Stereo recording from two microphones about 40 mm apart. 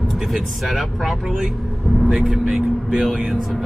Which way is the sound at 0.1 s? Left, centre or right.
Centre.